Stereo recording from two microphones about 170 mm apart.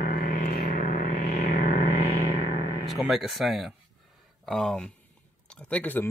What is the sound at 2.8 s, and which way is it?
Speech, centre (ahead or behind).